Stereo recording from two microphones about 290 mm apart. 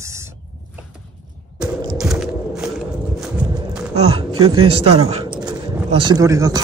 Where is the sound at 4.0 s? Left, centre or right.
Centre.